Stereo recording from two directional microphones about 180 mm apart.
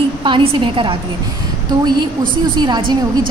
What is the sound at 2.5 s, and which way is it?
Speech, 25° right (ahead or behind).